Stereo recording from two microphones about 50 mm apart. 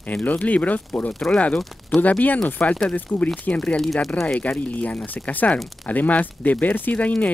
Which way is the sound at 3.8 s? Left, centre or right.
Centre.